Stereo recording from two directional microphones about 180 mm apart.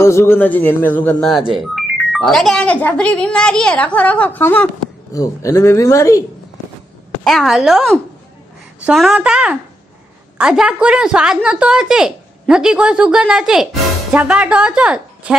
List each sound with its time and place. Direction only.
0.0 s a woman's voice: 15° left (ahead or behind)
7.2 s a woman's voice: centre (ahead or behind)